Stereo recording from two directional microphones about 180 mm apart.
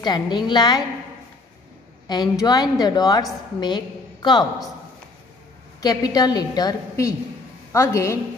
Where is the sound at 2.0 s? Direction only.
20° left (ahead or behind).